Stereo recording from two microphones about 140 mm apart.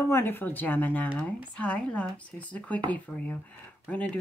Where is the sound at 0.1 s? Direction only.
15° left (ahead or behind).